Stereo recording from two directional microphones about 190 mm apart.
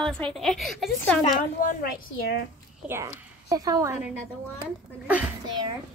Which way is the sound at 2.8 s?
15° right (ahead or behind).